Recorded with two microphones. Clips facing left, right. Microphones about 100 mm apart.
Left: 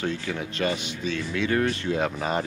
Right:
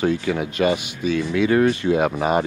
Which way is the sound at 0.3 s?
90° right.